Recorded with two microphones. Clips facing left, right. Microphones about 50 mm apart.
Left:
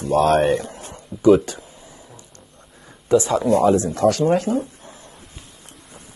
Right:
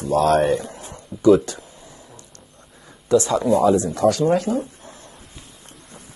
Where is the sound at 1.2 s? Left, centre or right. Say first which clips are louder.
Even; left.